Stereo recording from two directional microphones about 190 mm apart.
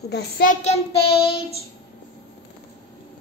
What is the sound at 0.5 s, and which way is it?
Speech, 30° left (ahead or behind).